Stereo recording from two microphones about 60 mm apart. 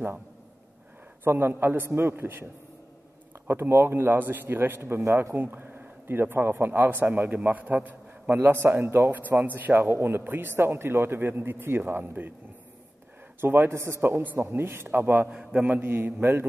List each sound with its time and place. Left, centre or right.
1.2 s a man's voice: right
5.0 s speech: right
5.3 s a man's voice: right
8.4 s a man's voice: right
9.5 s a man's voice: right
13.4 s speech: right
14.2 s a man's voice: right
15.2 s a man's voice: centre
15.8 s a man's voice: right